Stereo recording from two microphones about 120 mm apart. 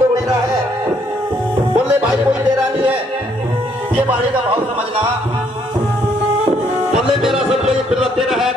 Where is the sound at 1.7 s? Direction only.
10° right (ahead or behind).